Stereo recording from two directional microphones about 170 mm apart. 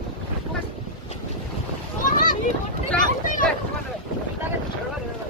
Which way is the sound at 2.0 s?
50° left (ahead or behind).